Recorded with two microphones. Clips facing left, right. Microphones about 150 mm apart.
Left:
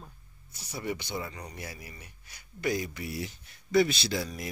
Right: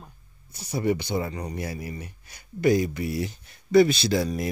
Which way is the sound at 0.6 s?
45° right (ahead or behind).